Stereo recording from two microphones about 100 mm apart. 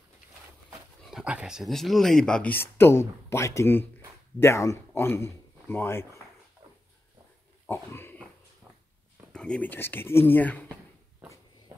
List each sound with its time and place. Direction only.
1.1 s speech: 10° right (ahead or behind)
1.7 s speech: 5° left (ahead or behind); by 6.2 s 25° left (ahead or behind)
7.6 s pig: 25° left (ahead or behind)
9.3 s speech: 10° left (ahead or behind)